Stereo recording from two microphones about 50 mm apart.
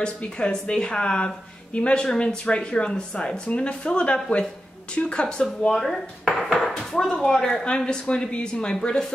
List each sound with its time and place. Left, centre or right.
0.0 s speech: centre
4.9 s dishes: centre
7.1 s speech: centre